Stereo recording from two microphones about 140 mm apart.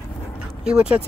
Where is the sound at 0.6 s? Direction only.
5° right (ahead or behind).